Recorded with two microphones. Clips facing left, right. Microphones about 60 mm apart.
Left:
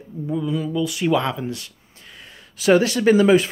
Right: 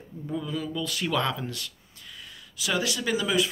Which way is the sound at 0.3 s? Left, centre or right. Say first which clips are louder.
Left 7 dB; centre.